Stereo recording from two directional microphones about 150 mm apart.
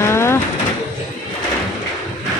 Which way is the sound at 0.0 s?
15° left (ahead or behind).